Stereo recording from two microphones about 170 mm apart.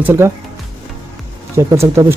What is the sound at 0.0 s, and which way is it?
Speech, 15° right (ahead or behind).